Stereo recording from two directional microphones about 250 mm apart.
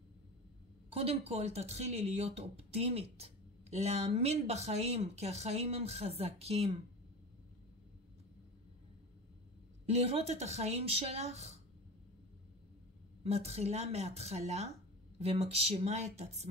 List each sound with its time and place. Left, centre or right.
0.9 s speech: right
9.8 s speech: right
13.2 s speech: right